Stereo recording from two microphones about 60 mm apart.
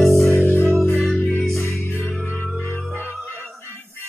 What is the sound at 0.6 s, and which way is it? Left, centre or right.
Music, right.